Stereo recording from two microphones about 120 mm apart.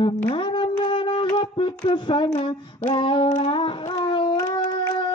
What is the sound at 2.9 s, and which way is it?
Female singing, 45° left (ahead or behind).